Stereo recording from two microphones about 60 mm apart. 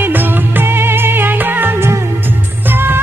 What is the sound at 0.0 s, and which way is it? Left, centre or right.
Music, right.